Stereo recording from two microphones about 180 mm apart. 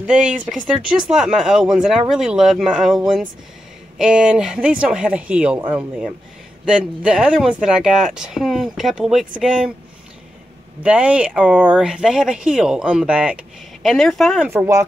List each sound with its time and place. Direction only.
0.0 s speech: 5° right (ahead or behind)
10.8 s speech: 5° right (ahead or behind)
14.5 s speech: 15° right (ahead or behind)